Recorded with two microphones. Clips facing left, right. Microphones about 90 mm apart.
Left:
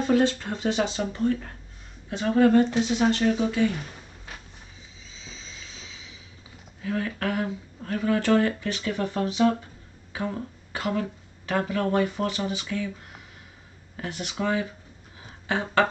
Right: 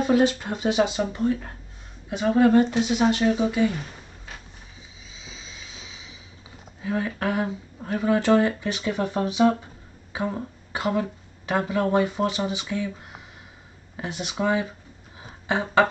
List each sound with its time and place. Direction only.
0.0 s speech: 10° right (ahead or behind)
5.1 s vehicle: 10° right (ahead or behind)
6.8 s speech: 20° right (ahead or behind)
15.4 s a sound: 20° right (ahead or behind)